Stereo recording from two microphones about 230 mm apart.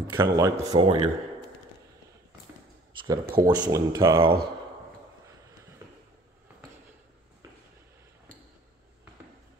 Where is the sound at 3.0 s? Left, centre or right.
Centre.